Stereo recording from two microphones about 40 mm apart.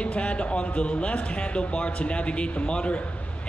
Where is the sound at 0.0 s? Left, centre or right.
Left.